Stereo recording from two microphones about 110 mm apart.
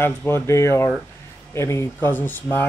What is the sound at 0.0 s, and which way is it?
Speech, 20° left (ahead or behind).